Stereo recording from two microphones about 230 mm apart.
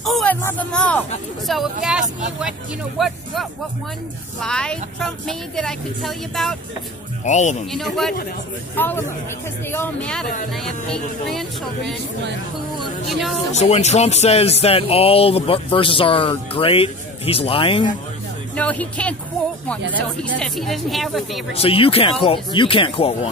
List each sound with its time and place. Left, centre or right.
0.0 s speech: centre
4.4 s speech: centre
7.2 s speech: left
7.7 s a man's voice: centre
13.5 s speech: left
18.6 s speech: centre
20.3 s speech: centre
21.5 s speech: left